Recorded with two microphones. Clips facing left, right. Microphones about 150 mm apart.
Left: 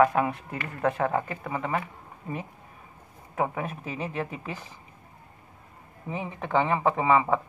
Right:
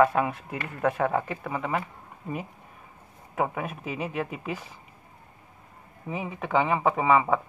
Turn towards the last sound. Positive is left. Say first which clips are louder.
# even
turn(degrees=-5)  # may be behind; listen again after turning